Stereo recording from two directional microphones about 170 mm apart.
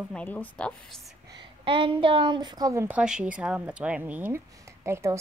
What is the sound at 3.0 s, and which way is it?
Speech, 5° right (ahead or behind).